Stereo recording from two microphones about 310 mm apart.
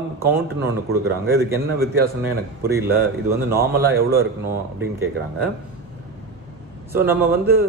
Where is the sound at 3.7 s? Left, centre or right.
Right.